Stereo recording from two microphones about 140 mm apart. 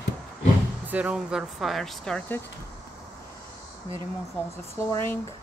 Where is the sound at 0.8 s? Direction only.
10° right (ahead or behind); by 2.4 s 10° left (ahead or behind).